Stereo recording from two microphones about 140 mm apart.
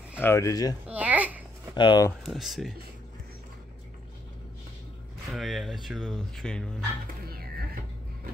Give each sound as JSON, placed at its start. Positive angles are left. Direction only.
{"t": 0.2, "sound": "speech", "side_deg": 20}
{"t": 0.8, "sound": "babbling", "side_deg": -10}
{"t": 1.8, "sound": "speech", "side_deg": 35}
{"t": 2.2, "sound": "speech", "side_deg": 0}
{"t": 5.3, "sound": "speech", "side_deg": 0}
{"t": 7.2, "sound": "music", "side_deg": -90}